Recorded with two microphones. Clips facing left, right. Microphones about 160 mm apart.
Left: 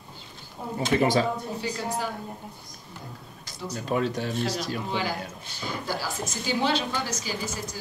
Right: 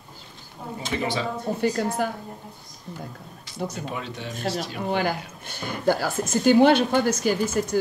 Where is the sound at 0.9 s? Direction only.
50° left (ahead or behind).